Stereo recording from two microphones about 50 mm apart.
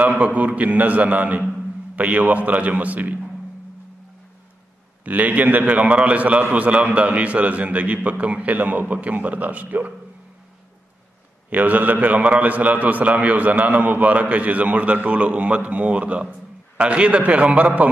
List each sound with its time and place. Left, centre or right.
0.0 s a man's voice: right
5.0 s a man's voice: right
11.5 s a man's voice: right